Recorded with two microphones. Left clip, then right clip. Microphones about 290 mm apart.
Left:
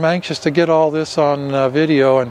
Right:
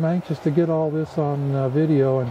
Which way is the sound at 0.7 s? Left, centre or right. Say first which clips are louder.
Left 9 dB; left.